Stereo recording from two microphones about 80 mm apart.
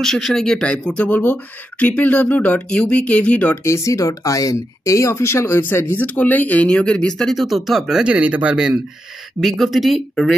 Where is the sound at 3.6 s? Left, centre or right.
Left; by 8.1 s centre.